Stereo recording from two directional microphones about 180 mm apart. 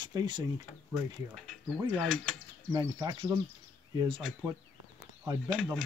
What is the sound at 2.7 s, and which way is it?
Speech, 20° right (ahead or behind).